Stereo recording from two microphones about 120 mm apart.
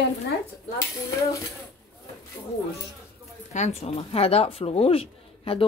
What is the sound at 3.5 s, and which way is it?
Speech, 70° left (ahead or behind).